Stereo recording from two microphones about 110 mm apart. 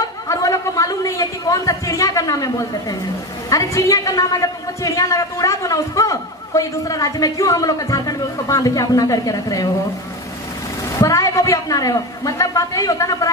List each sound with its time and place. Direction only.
0.0 s chatter: 30° left (ahead or behind)
3.4 s a man's voice: 30° left (ahead or behind)
11.0 s a man's voice: 30° left (ahead or behind)